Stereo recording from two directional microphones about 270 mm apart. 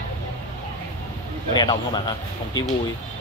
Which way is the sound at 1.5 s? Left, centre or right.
Centre.